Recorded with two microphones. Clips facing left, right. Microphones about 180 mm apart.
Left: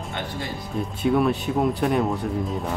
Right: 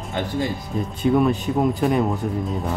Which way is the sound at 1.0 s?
Centre (ahead or behind).